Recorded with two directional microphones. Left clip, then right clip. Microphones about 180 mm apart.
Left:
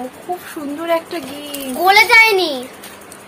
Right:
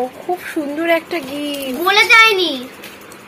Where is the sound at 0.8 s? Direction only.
10° right (ahead or behind).